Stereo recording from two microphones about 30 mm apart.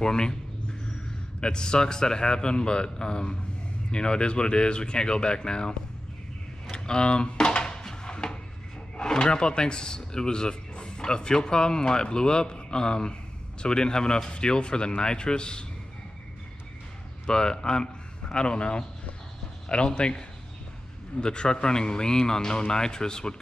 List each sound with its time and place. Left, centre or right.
0.0 s speech: left
1.4 s speech: left
7.8 s a sound: left
9.0 s speech: left
17.3 s speech: left
20.0 s speech: left